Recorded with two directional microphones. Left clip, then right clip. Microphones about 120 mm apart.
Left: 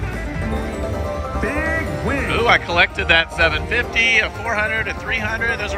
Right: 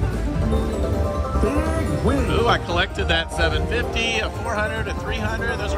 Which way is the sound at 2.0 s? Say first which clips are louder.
Left 3 dB; 15° right (ahead or behind).